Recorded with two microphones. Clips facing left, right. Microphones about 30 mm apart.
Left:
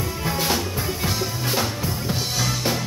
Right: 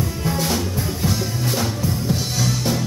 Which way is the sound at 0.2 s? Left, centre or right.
Centre.